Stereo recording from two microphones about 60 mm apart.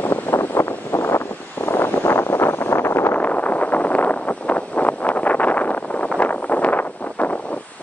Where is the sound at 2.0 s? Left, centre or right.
Left.